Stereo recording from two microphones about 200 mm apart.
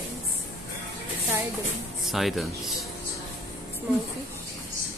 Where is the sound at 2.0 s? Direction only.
Centre (ahead or behind).